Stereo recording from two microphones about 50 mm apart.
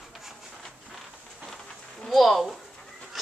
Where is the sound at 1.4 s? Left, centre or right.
Centre.